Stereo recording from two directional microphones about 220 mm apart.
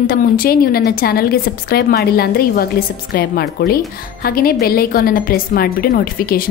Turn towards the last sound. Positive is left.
turn(degrees=40)  # may be behind; listen again after turning